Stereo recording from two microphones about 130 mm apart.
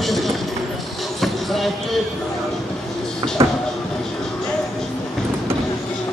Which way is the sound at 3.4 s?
45° right (ahead or behind).